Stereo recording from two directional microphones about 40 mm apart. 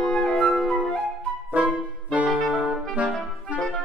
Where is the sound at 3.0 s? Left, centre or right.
Right.